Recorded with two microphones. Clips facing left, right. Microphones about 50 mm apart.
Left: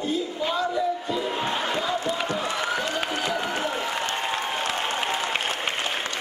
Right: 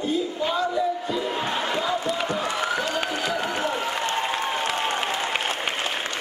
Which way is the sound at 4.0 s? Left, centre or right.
Right.